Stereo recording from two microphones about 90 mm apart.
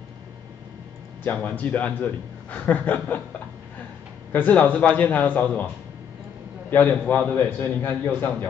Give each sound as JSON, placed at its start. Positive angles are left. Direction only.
{"t": 1.2, "sound": "a man's voice", "side_deg": 20}
{"t": 4.3, "sound": "a man's voice", "side_deg": 20}
{"t": 6.7, "sound": "a man's voice", "side_deg": 20}